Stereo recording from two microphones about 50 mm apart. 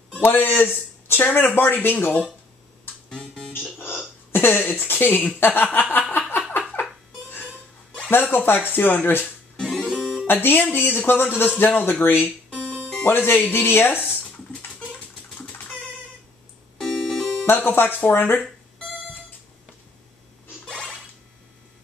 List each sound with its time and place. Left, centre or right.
0.2 s speech: left
3.2 s music: centre
4.3 s speech: left
8.1 s speech: left
9.9 s music: centre
10.2 s speech: left
12.4 s music: centre
13.0 s speech: left
14.5 s a sound: left
16.8 s music: centre
17.5 s speech: left